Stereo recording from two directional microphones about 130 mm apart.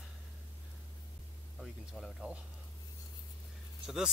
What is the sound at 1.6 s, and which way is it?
Speech, centre (ahead or behind).